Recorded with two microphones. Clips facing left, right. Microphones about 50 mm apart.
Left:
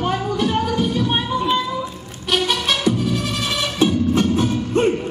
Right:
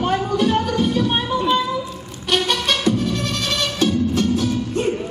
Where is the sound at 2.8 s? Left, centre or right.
Centre.